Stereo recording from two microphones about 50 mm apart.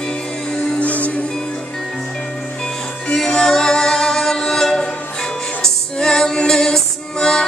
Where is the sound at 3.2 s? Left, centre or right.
Centre.